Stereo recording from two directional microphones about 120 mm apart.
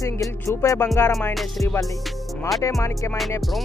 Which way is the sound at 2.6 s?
25° left (ahead or behind).